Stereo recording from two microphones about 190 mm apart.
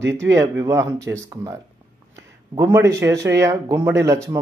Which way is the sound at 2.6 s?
15° right (ahead or behind).